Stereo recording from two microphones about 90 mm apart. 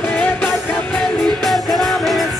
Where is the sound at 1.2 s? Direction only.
Centre (ahead or behind).